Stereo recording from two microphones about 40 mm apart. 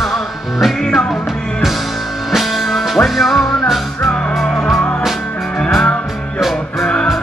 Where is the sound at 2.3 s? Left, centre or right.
Centre.